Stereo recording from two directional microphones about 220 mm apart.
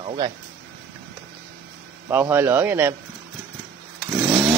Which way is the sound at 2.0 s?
10° right (ahead or behind).